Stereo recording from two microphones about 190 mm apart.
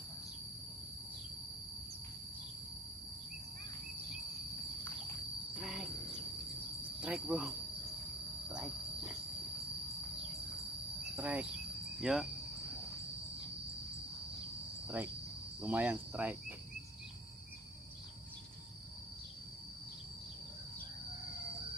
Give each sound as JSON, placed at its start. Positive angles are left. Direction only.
{"t": 5.6, "sound": "cricket", "side_deg": 0}
{"t": 7.0, "sound": "speech", "side_deg": -5}
{"t": 11.1, "sound": "insect", "side_deg": -10}
{"t": 15.6, "sound": "cricket", "side_deg": -10}